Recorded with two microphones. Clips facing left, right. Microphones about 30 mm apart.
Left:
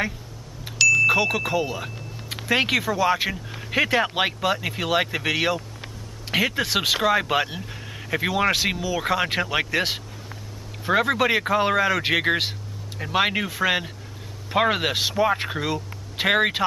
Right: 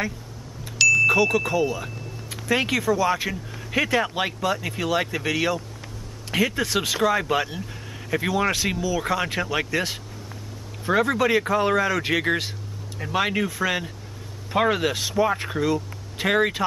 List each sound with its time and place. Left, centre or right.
0.7 s vehicle: centre
1.0 s speech: centre